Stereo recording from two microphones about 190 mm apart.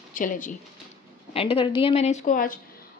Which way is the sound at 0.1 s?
45° left (ahead or behind).